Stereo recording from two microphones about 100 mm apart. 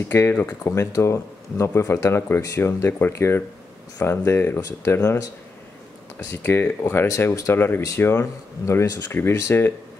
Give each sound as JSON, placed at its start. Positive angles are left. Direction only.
{"t": 0.1, "sound": "speech", "side_deg": 20}
{"t": 0.7, "sound": "speech", "side_deg": 30}
{"t": 4.6, "sound": "speech", "side_deg": 35}
{"t": 4.9, "sound": "speech", "side_deg": 20}